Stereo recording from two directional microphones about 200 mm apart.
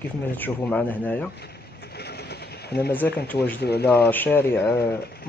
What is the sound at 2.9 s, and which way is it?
Speech, 10° left (ahead or behind).